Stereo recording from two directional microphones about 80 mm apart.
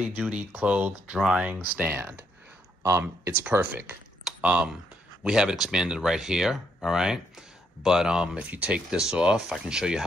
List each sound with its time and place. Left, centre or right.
0.0 s speech: centre
1.5 s speech: right
4.2 s a sound: centre
5.2 s speech: centre